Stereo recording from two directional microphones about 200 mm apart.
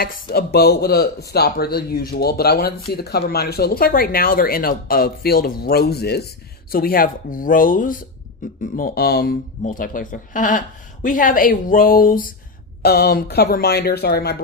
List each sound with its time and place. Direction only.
0.0 s speech: 50° left (ahead or behind)